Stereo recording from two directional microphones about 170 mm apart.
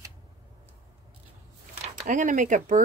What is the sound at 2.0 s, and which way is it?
Speech, 50° right (ahead or behind).